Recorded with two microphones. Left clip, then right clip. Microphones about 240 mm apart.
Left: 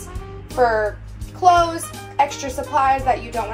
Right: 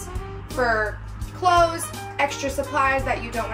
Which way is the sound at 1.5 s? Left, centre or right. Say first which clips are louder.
Left 3 dB; centre.